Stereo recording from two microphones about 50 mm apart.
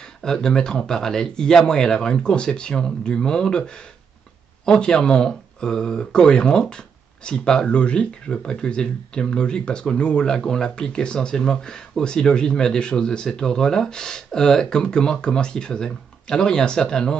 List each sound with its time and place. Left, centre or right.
0.0 s speech: centre